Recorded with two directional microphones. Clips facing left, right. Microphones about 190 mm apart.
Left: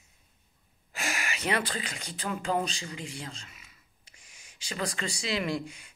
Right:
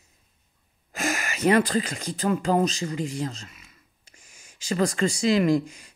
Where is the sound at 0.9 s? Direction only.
45° right (ahead or behind).